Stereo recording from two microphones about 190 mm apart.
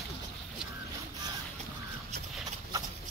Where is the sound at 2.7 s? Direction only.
20° right (ahead or behind).